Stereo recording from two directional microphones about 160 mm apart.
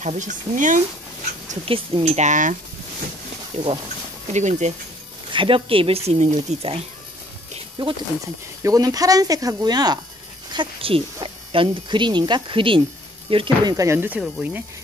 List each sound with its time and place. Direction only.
0.0 s speech: 50° right (ahead or behind)
1.7 s speech: 40° right (ahead or behind)
3.5 s speech: 35° right (ahead or behind)
4.3 s speech: 45° right (ahead or behind)
5.3 s speech: 35° right (ahead or behind)
7.8 s speech: 30° right (ahead or behind)
13.7 s speech: 15° right (ahead or behind)